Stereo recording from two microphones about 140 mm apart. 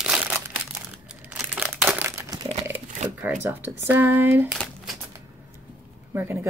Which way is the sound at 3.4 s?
15° right (ahead or behind).